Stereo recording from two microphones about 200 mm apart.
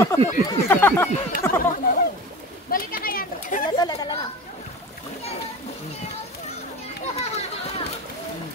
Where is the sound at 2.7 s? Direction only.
45° left (ahead or behind).